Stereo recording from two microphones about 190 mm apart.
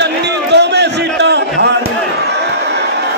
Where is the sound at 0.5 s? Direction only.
65° right (ahead or behind).